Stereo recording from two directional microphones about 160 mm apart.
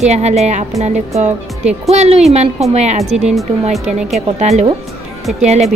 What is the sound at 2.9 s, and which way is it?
Speech, centre (ahead or behind).